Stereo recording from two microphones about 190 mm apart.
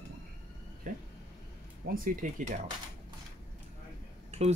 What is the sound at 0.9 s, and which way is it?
Speech, 45° right (ahead or behind).